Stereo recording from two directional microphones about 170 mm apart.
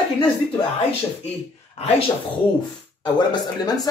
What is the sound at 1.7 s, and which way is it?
Speech, 35° left (ahead or behind).